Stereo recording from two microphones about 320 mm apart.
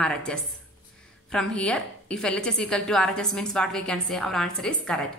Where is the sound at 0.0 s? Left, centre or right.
Centre.